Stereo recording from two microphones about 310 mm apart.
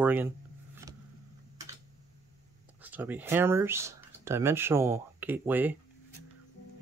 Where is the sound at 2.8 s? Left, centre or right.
Centre.